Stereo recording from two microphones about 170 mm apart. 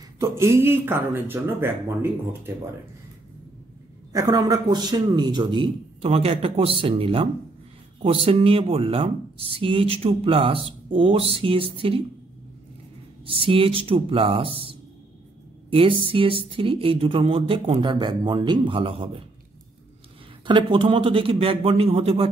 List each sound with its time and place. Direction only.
0.2 s speech: 15° right (ahead or behind)
4.1 s a man's voice: 20° right (ahead or behind)
13.2 s speech: 35° right (ahead or behind)
20.4 s speech: 30° right (ahead or behind)